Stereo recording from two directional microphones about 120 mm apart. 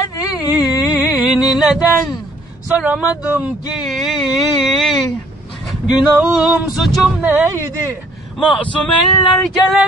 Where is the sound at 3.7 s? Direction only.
Centre (ahead or behind).